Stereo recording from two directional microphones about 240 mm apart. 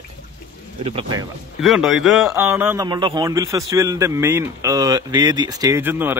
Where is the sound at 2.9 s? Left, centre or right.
Centre.